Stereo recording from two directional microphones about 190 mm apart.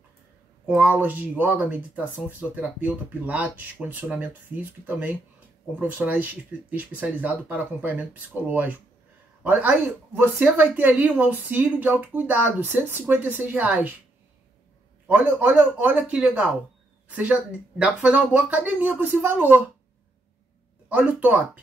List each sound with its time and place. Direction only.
0.7 s speech: 5° right (ahead or behind)
15.0 s speech: 10° right (ahead or behind)
20.9 s speech: 10° right (ahead or behind)